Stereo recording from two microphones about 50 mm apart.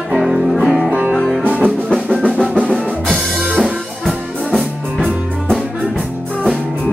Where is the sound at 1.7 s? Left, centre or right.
Centre.